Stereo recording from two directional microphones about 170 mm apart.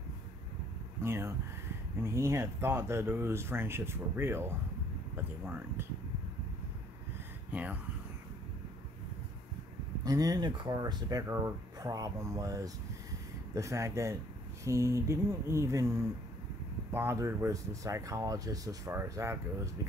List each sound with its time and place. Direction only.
1.0 s a sound: 15° right (ahead or behind)
2.0 s speech: 15° right (ahead or behind)
7.5 s speech: 10° right (ahead or behind)
10.0 s speech: 20° right (ahead or behind)
16.9 s speech: 15° right (ahead or behind)